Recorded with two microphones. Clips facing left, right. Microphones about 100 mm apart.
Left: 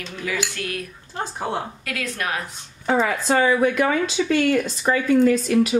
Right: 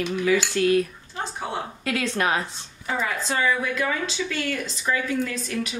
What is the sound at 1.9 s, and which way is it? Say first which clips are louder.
Speech: right 6 dB; 25° right (ahead or behind).